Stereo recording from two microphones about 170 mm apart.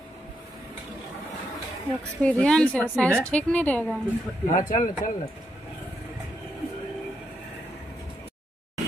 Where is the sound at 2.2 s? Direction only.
5° left (ahead or behind).